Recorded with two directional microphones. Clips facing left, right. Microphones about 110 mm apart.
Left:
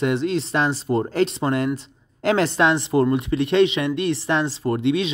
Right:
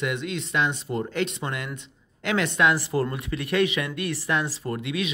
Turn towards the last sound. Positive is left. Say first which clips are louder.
# left 8 dB
turn(degrees=30)  # may be behind; listen again after turning